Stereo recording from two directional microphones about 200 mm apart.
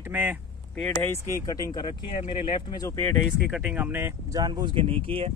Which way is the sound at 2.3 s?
25° left (ahead or behind).